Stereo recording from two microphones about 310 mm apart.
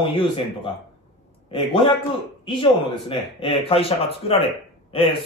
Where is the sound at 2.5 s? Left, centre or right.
Centre.